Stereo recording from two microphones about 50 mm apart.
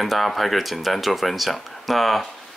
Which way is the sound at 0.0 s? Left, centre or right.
Centre.